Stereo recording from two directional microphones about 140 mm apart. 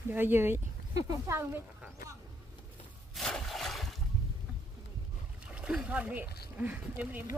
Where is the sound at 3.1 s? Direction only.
Centre (ahead or behind).